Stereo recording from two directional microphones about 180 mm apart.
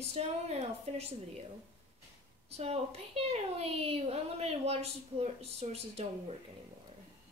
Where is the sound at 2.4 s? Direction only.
35° right (ahead or behind).